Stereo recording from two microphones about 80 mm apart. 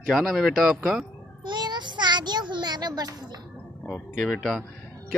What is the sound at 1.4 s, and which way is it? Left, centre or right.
Child singing, right.